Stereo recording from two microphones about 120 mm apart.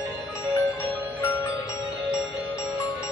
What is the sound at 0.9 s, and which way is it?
Music, 15° left (ahead or behind).